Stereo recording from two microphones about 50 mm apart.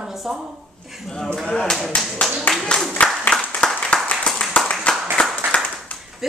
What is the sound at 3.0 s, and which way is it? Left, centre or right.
Applause, left.